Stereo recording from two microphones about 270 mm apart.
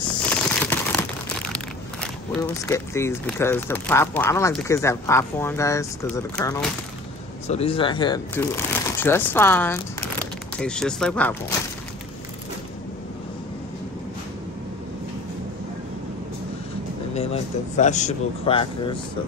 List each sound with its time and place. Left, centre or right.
0.3 s crumpling: centre
1.5 s speech: centre
7.4 s speech: left; by 11.3 s centre
17.1 s speech: left